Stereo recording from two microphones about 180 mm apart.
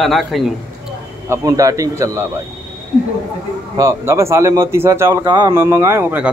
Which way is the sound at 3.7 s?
15° right (ahead or behind).